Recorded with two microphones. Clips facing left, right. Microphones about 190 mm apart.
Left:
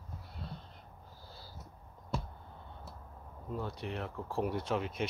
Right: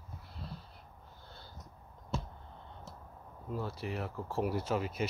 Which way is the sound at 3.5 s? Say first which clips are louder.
Right 1 dB; centre (ahead or behind).